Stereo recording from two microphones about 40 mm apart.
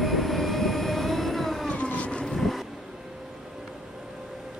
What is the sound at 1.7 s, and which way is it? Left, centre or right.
Vehicle, left.